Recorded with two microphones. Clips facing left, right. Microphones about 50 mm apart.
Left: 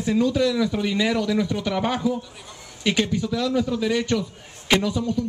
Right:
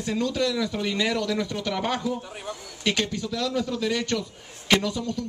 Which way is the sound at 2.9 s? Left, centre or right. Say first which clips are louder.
Left 4 dB; centre.